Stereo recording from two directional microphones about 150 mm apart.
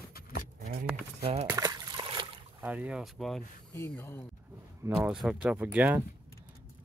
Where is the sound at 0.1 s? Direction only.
80° left.